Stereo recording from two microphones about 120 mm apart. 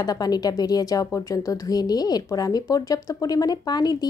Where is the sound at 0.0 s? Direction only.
30° left (ahead or behind).